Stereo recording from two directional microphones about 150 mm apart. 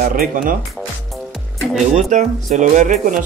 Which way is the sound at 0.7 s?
Centre (ahead or behind).